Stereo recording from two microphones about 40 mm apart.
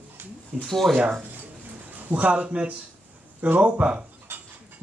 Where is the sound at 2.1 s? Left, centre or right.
Right.